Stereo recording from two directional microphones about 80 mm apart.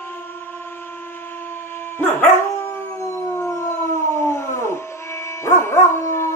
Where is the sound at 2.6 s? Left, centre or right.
Left.